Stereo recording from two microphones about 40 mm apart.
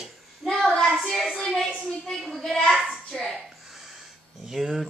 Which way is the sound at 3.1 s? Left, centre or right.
Centre.